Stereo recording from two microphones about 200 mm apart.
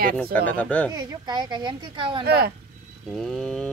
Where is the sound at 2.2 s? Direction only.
50° right (ahead or behind).